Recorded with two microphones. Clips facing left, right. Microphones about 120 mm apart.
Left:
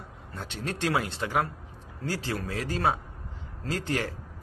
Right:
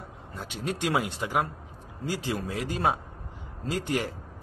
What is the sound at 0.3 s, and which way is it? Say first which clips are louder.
A man's voice: right 2 dB; 10° right (ahead or behind).